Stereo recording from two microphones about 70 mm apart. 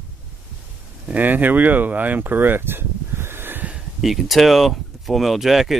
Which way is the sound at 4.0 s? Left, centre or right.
Centre.